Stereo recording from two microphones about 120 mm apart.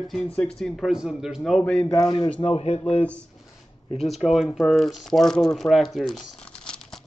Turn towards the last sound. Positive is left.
turn(degrees=5)  # may be behind; listen again after turning